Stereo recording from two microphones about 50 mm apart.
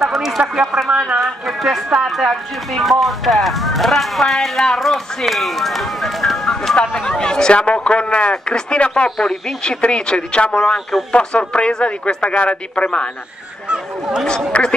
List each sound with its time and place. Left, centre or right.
0.0 s speech: centre
0.8 s a man's voice: centre
1.2 s speech: centre
6.7 s speech: centre
14.5 s speech: left